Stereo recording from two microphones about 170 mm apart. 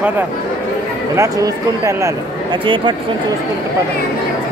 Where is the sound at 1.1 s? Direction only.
20° right (ahead or behind).